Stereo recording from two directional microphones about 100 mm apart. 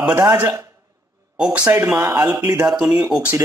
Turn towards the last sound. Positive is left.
turn(degrees=-15)  # may be behind; listen again after turning